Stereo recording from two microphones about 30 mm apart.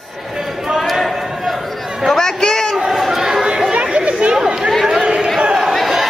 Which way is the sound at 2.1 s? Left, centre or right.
Centre.